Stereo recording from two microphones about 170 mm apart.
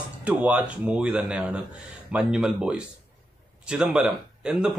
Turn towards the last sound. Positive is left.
turn(degrees=-5)  # may be behind; listen again after turning